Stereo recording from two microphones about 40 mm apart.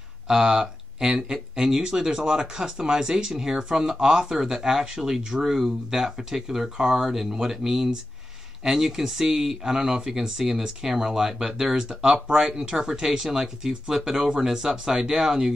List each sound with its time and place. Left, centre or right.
0.3 s speech: centre